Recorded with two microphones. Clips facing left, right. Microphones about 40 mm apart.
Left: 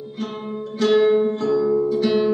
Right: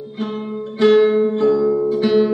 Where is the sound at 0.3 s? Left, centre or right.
Centre.